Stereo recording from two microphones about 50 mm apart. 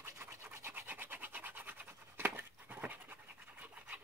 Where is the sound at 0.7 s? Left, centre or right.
Right.